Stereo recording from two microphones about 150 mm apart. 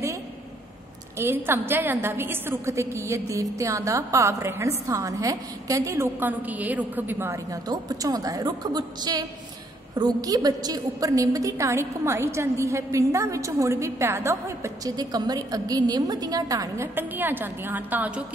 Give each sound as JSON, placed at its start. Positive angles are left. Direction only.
{"t": 1.1, "sound": "a woman's voice", "side_deg": -15}